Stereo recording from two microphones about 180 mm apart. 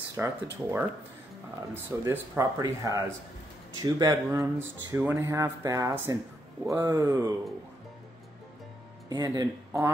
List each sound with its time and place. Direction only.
0.2 s speech: 10° right (ahead or behind)
9.1 s speech: 20° right (ahead or behind)